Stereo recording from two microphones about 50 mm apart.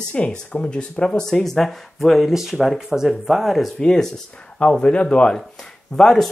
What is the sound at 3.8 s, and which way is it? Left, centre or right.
Speech, centre.